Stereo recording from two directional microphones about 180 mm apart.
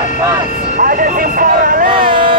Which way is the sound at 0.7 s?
50° right (ahead or behind).